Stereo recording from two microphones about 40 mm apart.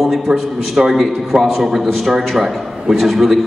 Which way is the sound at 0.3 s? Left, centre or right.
Right.